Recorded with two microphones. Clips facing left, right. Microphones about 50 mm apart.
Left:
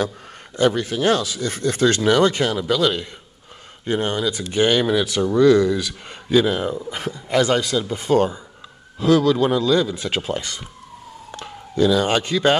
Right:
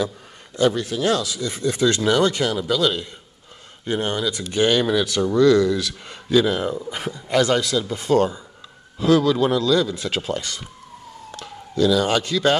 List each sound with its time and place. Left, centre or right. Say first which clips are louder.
0.6 s speech: left 1 dB; left
2.0 s speech: left 2 dB; left
3.8 s speech: left 2 dB; left
9.0 s speech: left 1 dB; centre
9.5 s speech: left 1 dB; left
11.3 s speech: left 2 dB; left